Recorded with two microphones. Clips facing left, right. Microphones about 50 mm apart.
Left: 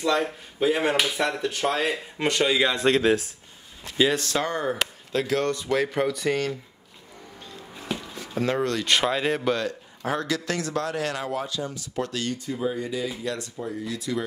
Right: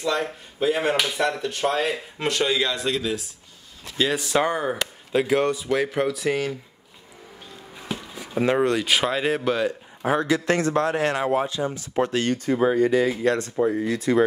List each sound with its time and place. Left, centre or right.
0.0 s speech: centre
2.7 s speech: left
4.1 s speech: centre
7.5 s a sound: centre
8.4 s speech: centre
8.8 s a man's voice: centre; by 12.4 s right
12.4 s speech: right